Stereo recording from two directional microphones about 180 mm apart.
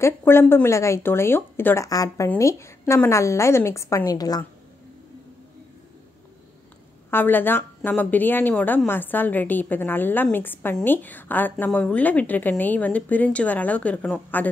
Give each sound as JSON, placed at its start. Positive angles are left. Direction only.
{"t": 0.0, "sound": "a woman's voice", "side_deg": 15}
{"t": 7.1, "sound": "a woman's voice", "side_deg": 10}